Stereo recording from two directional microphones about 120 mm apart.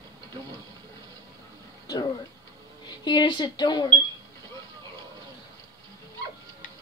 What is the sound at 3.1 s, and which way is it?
Female singing, 40° left (ahead or behind).